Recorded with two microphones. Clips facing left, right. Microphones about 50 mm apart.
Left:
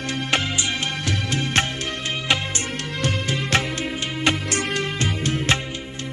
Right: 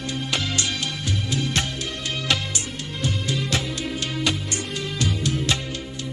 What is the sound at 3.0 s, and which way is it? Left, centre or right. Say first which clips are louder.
Music: left 2 dB; left.